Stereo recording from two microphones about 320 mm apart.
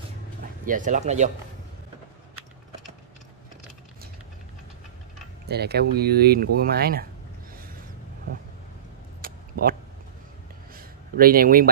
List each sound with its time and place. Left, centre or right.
0.7 s speech: right
5.5 s speech: right
9.2 s a sound: right